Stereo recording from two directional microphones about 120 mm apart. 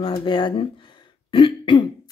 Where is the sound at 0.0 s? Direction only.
45° left (ahead or behind).